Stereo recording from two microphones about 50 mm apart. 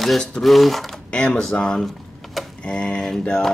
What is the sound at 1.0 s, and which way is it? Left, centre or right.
Speech, left.